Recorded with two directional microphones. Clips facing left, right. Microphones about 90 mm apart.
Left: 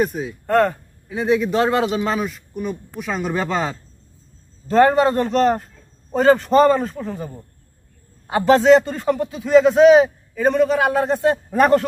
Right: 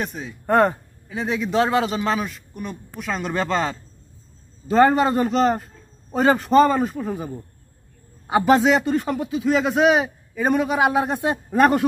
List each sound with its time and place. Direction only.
0.0 s a man's voice: centre (ahead or behind)
0.5 s speech: 20° right (ahead or behind)
1.0 s a man's voice: centre (ahead or behind)
8.3 s a man's voice: 5° right (ahead or behind)